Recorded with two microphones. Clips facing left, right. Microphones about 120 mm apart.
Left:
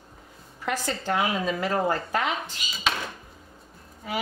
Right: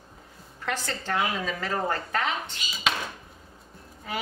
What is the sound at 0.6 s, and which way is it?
A woman's voice, 10° left (ahead or behind).